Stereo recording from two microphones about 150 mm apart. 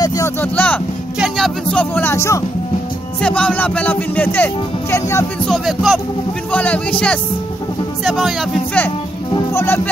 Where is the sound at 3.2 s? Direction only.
5° left (ahead or behind).